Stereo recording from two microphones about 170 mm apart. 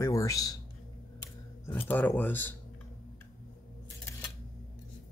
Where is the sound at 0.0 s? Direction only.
20° left (ahead or behind).